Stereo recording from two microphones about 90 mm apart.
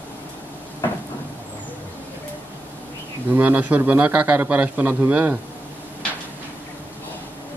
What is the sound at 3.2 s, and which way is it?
A man's voice, 20° right (ahead or behind).